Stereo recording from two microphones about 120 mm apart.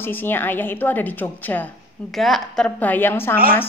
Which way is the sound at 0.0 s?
15° left (ahead or behind).